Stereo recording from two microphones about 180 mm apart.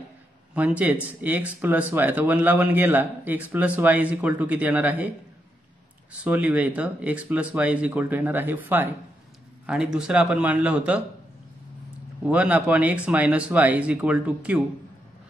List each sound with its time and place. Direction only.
0.6 s a man's voice: 10° right (ahead or behind)
6.2 s a man's voice: 10° right (ahead or behind)
9.9 s a man's voice: 5° right (ahead or behind)
12.3 s a man's voice: 10° right (ahead or behind)